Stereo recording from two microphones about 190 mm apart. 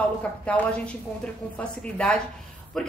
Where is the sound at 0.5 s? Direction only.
5° left (ahead or behind).